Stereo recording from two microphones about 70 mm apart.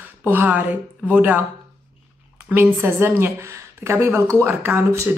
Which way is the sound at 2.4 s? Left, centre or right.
Right.